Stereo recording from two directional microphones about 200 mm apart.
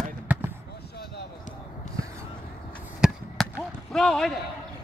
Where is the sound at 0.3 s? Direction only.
10° right (ahead or behind).